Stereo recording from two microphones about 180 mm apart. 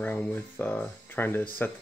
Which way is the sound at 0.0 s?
10° left (ahead or behind).